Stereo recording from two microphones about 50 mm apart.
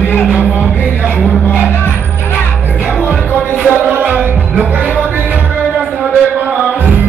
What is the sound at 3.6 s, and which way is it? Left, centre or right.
Music, right.